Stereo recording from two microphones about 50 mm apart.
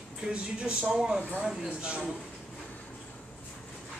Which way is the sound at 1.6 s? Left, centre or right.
Right.